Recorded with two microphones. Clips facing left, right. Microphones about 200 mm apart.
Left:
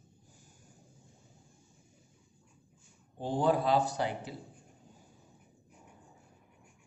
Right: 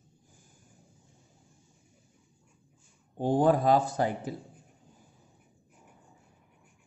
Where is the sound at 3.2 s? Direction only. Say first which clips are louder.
Right 5 dB; 50° right (ahead or behind).